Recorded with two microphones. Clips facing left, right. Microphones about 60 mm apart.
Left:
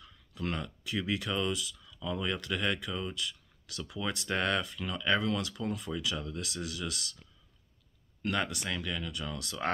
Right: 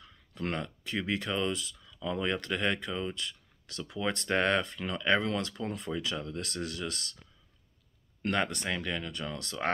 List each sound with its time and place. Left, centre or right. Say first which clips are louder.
0.3 s speech: right 2 dB; right
1.9 s a sound: right 3 dB; right
2.2 s speech: right 2 dB; right
3.2 s a sound: left 1 dB; right
3.9 s speech: right 4 dB; right
8.8 s speech: right 2 dB; right